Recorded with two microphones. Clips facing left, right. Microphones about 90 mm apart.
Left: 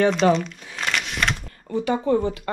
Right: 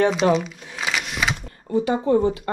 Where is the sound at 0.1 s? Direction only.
5° right (ahead or behind).